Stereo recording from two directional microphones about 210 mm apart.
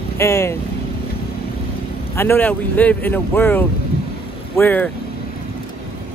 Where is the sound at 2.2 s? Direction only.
10° left (ahead or behind).